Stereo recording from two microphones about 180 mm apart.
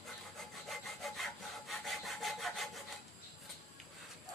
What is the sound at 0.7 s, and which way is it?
Sawing, centre (ahead or behind).